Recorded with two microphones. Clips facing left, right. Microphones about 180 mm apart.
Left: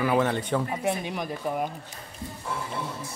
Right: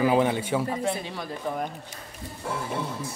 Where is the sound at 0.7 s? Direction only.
15° left (ahead or behind).